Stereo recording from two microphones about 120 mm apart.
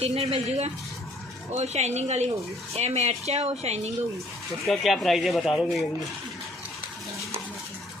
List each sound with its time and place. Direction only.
0.0 s speech: 60° right (ahead or behind)
4.6 s speech: centre (ahead or behind)